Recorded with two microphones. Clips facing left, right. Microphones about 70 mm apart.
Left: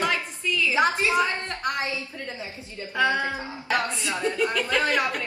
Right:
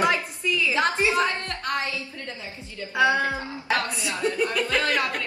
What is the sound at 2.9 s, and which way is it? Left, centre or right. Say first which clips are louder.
Speech: right 2 dB; centre.